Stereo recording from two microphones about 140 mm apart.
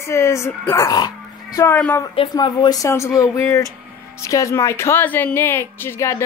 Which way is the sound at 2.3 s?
30° left (ahead or behind).